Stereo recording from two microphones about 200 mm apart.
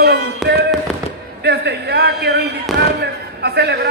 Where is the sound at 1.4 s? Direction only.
55° right (ahead or behind).